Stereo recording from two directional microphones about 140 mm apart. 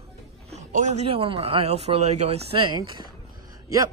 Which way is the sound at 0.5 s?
60° right (ahead or behind).